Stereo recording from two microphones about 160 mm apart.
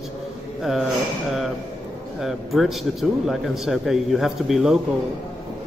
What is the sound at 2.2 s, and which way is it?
Speech, centre (ahead or behind).